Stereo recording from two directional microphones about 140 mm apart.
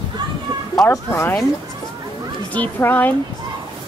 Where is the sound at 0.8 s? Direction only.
15° left (ahead or behind).